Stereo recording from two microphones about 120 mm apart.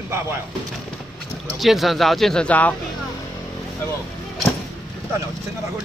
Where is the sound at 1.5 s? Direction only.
Centre (ahead or behind).